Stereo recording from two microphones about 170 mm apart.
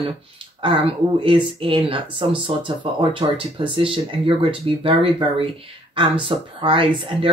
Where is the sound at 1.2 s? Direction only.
30° right (ahead or behind).